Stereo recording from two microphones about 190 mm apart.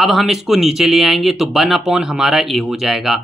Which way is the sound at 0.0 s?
Centre (ahead or behind).